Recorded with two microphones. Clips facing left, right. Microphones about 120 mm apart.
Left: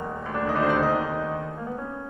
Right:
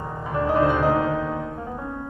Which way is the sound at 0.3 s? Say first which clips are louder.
Right 4 dB; 15° right (ahead or behind).